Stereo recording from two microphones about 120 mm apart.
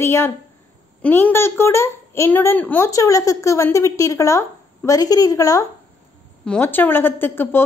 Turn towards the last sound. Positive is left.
turn(degrees=20)  # may be behind; listen again after turning